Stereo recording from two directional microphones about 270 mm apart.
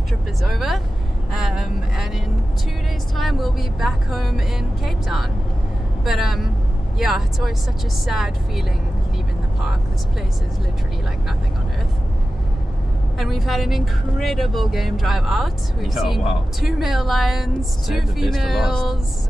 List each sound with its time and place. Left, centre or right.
0.4 s speech: centre
13.2 s speech: centre